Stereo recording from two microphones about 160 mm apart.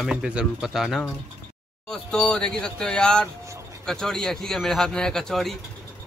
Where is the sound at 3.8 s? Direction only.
5° left (ahead or behind).